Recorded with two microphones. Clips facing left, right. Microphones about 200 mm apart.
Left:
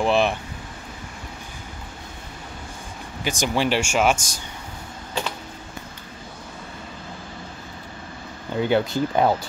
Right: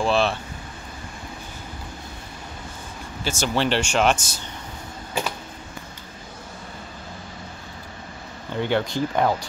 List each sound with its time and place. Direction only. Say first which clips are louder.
0.0 s speech: left 1 dB; 15° left (ahead or behind)
3.3 s speech: left 1 dB; 15° left (ahead or behind)
8.5 s speech: left 2 dB; 5° left (ahead or behind)